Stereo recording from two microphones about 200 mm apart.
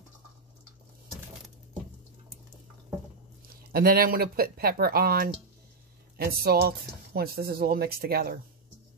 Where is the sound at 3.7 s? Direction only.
45° right (ahead or behind).